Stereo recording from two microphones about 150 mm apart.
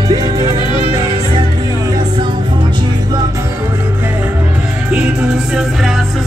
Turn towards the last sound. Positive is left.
turn(degrees=-5)  # may be behind; listen again after turning